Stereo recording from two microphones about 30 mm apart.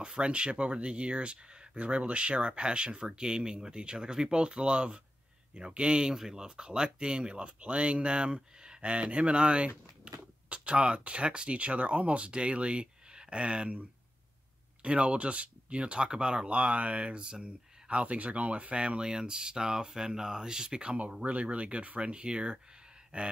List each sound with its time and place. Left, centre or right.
0.0 s speech: right
6.1 s speech: centre
6.4 s speech: right
14.8 s speech: right
16.4 s speech: right
21.2 s speech: right